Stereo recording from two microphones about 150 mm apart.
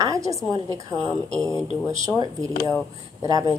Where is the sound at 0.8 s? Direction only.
25° right (ahead or behind).